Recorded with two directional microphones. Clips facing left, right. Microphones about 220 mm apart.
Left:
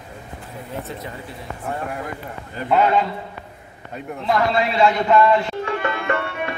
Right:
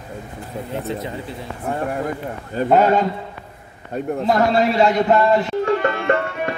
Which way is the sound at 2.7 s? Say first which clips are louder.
Right 2 dB; 40° right (ahead or behind).